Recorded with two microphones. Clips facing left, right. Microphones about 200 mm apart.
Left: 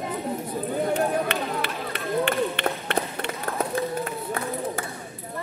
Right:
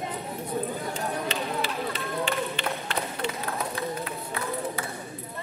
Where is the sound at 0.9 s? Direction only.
60° left (ahead or behind).